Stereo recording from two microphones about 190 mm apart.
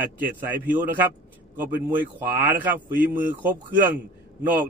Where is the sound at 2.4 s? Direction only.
10° right (ahead or behind).